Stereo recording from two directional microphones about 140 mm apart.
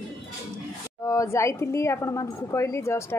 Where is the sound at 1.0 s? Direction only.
20° left (ahead or behind).